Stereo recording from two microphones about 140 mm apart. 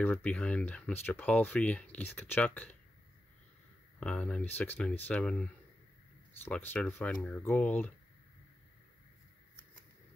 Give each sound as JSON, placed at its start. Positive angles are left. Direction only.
{"t": 0.0, "sound": "speech", "side_deg": 10}
{"t": 4.0, "sound": "speech", "side_deg": 5}